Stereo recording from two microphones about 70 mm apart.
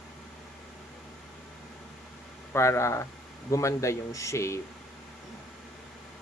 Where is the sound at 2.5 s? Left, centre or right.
Left.